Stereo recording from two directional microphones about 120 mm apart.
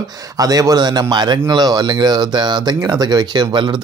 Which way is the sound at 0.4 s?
30° right (ahead or behind).